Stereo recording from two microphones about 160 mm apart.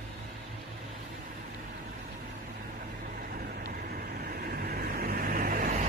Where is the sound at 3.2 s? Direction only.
65° right (ahead or behind).